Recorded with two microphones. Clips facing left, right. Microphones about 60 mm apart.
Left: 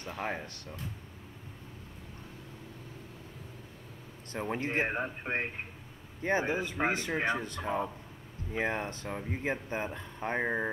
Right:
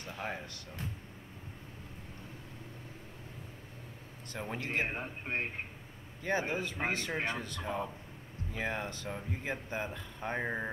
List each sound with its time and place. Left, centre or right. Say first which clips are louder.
4.3 s speech: left 4 dB; left